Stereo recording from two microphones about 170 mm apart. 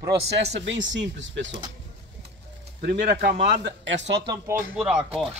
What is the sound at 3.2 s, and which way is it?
Speech, 70° right (ahead or behind).